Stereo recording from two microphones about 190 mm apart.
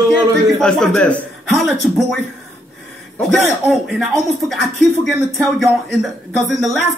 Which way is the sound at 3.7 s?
Centre (ahead or behind).